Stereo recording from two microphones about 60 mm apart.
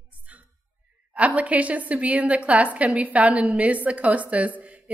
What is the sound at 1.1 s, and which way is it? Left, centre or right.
A woman's voice, right.